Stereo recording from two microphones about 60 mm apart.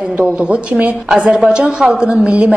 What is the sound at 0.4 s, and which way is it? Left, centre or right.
A woman's voice, centre.